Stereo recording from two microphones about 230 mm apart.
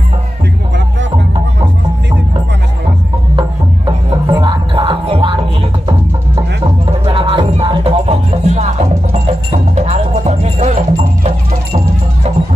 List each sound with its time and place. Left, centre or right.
3.3 s music: centre
9.8 s music: right